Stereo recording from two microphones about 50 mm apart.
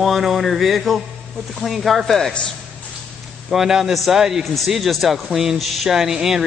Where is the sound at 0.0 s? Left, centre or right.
Centre.